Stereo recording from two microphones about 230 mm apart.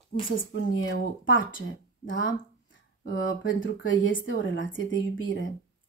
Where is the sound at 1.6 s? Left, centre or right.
Left.